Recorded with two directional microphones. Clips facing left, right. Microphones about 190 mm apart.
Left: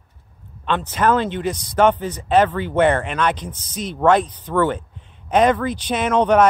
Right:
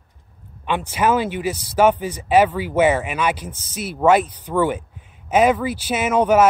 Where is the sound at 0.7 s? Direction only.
10° right (ahead or behind).